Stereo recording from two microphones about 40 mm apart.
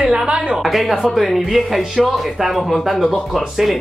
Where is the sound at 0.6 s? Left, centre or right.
Centre.